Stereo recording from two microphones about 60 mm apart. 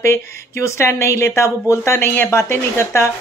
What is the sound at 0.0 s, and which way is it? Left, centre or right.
Speech, left.